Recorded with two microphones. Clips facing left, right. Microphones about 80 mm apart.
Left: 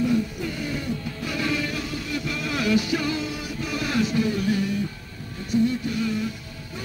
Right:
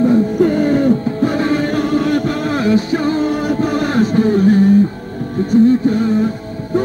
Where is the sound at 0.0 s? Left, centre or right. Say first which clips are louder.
Right 12 dB; right.